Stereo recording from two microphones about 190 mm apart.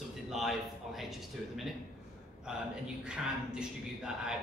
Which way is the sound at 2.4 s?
5° right (ahead or behind).